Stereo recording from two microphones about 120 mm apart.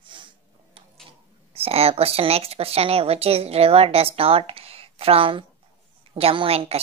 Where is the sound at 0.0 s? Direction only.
45° right (ahead or behind).